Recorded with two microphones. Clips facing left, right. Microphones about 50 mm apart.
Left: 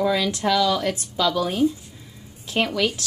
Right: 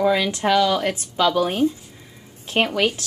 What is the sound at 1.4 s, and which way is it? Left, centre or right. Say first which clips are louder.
Speech: right 1 dB; right.